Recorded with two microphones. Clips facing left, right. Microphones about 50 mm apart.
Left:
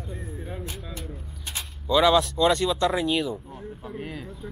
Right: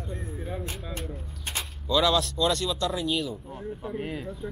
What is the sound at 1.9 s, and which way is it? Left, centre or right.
Speech, left.